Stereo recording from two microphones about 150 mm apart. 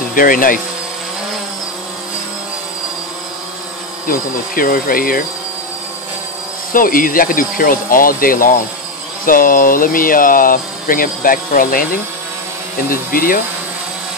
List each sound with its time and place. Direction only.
0.1 s speech: 70° left (ahead or behind)
4.1 s speech: 70° left (ahead or behind)
6.7 s speech: 70° left (ahead or behind)